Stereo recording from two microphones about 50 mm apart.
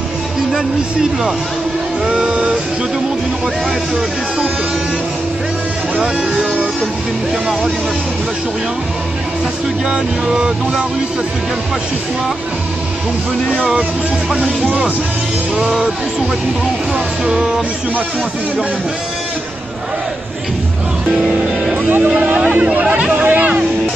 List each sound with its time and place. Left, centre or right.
0.6 s music: centre
5.9 s speech: right
9.8 s music: centre
14.3 s speech: centre
16.9 s music: centre
21.1 s music: centre
22.0 s speech: right